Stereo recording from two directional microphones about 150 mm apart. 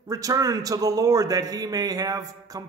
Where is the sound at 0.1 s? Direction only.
25° right (ahead or behind).